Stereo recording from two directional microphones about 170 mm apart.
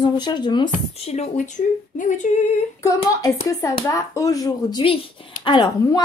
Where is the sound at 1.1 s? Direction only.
45° left (ahead or behind).